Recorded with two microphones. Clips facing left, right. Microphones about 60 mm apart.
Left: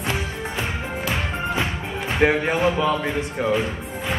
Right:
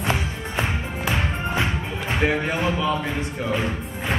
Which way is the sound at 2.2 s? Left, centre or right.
Left.